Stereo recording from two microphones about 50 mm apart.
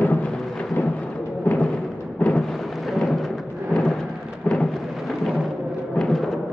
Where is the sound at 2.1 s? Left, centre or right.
Left.